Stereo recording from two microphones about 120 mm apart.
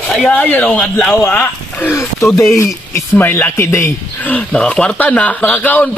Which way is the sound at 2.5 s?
25° left (ahead or behind).